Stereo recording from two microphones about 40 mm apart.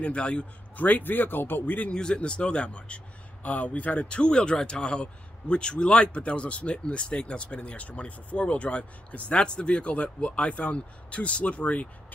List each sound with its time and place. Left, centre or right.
0.0 s a man's voice: left
0.7 s speech: left
1.9 s a man's voice: left
3.4 s speech: left
4.0 s a man's voice: left